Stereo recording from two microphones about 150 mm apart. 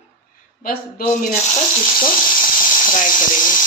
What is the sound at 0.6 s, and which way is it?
Speech, 65° left (ahead or behind).